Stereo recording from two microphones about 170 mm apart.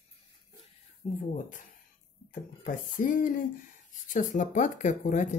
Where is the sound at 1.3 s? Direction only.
50° left (ahead or behind).